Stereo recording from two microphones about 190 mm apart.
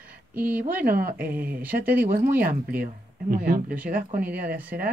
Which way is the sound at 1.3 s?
10° right (ahead or behind).